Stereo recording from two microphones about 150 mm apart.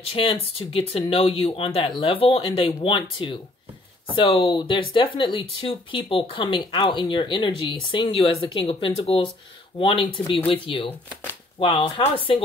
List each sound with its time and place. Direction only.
0.0 s speech: 35° left (ahead or behind)